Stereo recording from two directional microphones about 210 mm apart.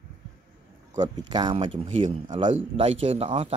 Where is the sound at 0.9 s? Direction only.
20° right (ahead or behind).